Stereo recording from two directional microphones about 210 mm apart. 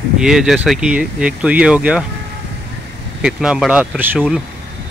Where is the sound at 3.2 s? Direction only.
5° right (ahead or behind).